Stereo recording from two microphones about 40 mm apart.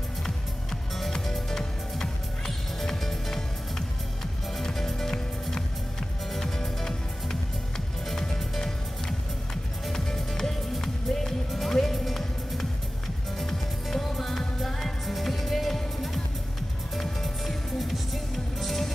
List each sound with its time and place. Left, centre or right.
0.2 s music: centre
9.9 s music: centre